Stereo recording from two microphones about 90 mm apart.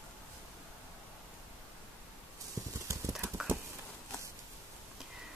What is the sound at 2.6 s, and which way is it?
Clip-clop, 30° right (ahead or behind).